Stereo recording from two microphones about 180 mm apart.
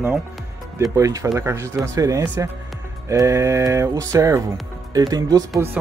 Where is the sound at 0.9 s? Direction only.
15° right (ahead or behind).